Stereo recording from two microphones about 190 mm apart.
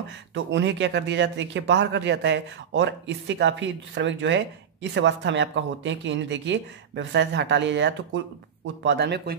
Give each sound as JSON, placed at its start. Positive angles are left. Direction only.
{"t": 0.3, "sound": "a man's voice", "side_deg": -70}